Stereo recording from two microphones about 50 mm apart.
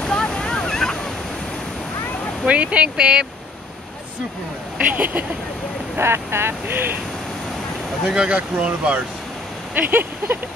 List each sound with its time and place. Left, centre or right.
0.0 s waves: centre
2.4 s speech: right
4.7 s speech: right
5.9 s speech: right
8.1 s speech: right
9.8 s speech: right